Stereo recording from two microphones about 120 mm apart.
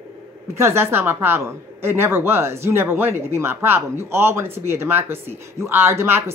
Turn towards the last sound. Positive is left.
turn(degrees=-20)  # may be behind; listen again after turning